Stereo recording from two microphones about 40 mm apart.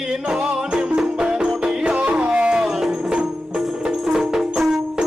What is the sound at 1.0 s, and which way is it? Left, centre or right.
Music, centre.